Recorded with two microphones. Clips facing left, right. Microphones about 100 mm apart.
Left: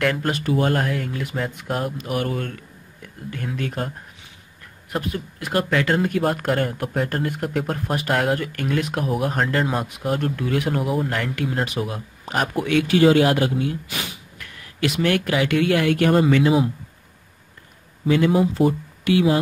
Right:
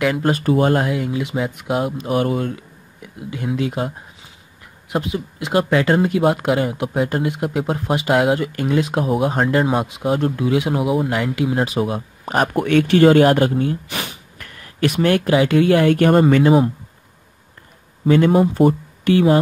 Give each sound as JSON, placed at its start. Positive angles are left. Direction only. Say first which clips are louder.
{"t": 0.3, "sound": "speech", "louder": "right 5 dB", "side_deg": -35}
{"t": 2.0, "sound": "speech", "louder": "right 6 dB", "side_deg": -25}
{"t": 5.1, "sound": "speech", "louder": "right 5 dB", "side_deg": -20}
{"t": 6.2, "sound": "speech", "louder": "right 4 dB", "side_deg": -10}
{"t": 11.6, "sound": "speech", "louder": "right 6 dB", "side_deg": -25}
{"t": 12.5, "sound": "speech", "louder": "right 4 dB", "side_deg": -50}
{"t": 14.4, "sound": "a sound", "louder": "right 4 dB", "side_deg": -45}
{"t": 15.0, "sound": "speech", "louder": "right 5 dB", "side_deg": -30}
{"t": 15.9, "sound": "speech", "louder": "right 4 dB", "side_deg": -45}
{"t": 18.0, "sound": "speech", "louder": "right 4 dB", "side_deg": -40}